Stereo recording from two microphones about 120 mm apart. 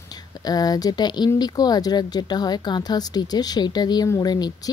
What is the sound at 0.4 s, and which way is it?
Speech, 30° left (ahead or behind).